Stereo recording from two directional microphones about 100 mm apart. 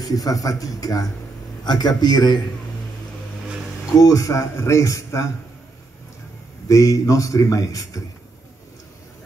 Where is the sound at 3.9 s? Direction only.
35° left (ahead or behind).